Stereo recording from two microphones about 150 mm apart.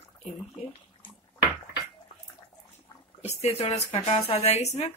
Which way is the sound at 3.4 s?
45° left (ahead or behind).